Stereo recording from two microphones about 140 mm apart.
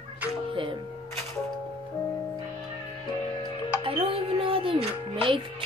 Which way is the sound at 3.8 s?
40° right (ahead or behind).